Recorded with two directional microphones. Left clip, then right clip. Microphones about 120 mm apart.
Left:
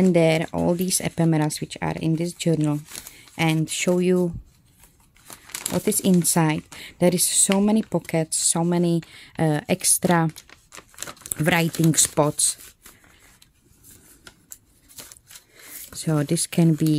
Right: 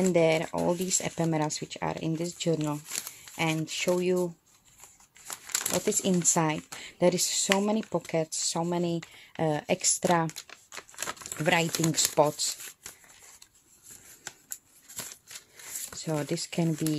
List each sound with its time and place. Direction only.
0.0 s speech: 35° left (ahead or behind)
2.9 s a sound: 30° left (ahead or behind)
3.4 s speech: 55° left (ahead or behind)
5.3 s speech: 25° left (ahead or behind)
10.8 s speech: 40° left (ahead or behind)
15.9 s speech: 45° left (ahead or behind)